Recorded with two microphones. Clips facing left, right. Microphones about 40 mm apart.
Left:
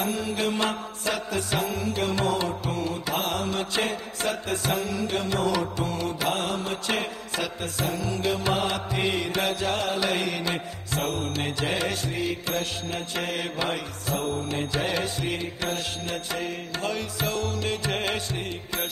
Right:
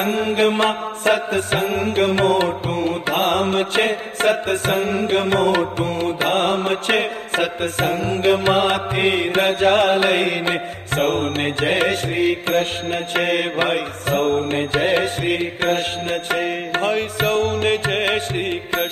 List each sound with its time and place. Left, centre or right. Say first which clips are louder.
0.0 s mantra: right 9 dB; right